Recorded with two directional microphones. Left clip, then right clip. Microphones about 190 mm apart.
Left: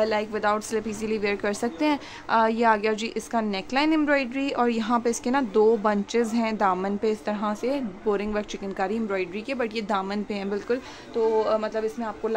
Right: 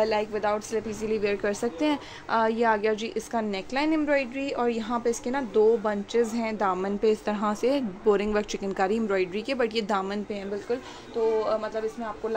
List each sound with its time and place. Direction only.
0.0 s a woman's voice: 15° left (ahead or behind)
7.0 s a woman's voice: centre (ahead or behind)
11.3 s a man's voice: 45° left (ahead or behind)